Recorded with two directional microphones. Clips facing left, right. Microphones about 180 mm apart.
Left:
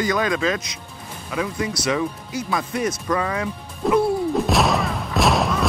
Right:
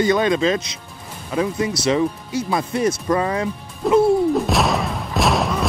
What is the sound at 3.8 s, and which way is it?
Speech, centre (ahead or behind).